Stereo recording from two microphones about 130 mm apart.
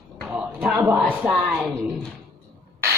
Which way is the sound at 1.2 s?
Centre (ahead or behind).